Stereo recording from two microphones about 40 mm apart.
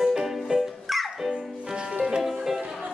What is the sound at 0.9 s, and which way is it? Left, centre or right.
Music, centre.